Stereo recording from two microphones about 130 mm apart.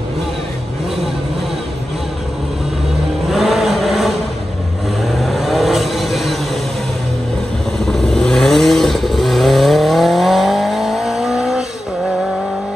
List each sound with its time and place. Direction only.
3.3 s vehicle: centre (ahead or behind)
7.8 s vehicle: 5° left (ahead or behind)